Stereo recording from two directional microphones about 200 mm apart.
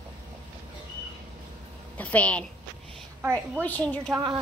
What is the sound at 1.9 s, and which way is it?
Speech, 5° left (ahead or behind).